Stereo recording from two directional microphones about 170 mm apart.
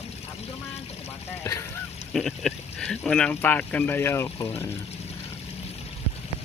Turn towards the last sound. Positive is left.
turn(degrees=15)  # may be behind; listen again after turning